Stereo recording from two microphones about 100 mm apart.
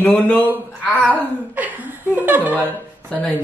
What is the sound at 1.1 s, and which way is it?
Speech, 15° right (ahead or behind).